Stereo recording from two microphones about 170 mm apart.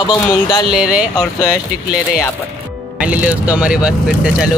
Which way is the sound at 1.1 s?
20° left (ahead or behind).